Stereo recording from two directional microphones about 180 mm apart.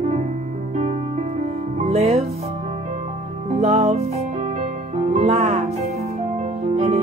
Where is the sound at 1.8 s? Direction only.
35° right (ahead or behind).